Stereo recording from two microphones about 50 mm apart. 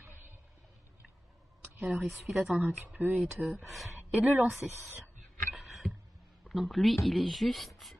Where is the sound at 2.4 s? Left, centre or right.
Right.